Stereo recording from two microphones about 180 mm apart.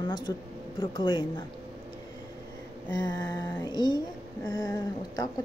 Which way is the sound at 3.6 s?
20° left (ahead or behind).